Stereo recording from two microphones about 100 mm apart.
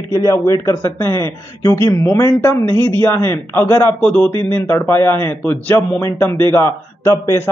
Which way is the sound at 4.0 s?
10° left (ahead or behind).